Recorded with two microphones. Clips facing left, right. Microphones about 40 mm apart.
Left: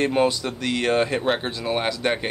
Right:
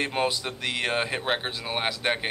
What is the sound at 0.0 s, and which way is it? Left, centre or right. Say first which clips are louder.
Speech: left 6 dB; centre.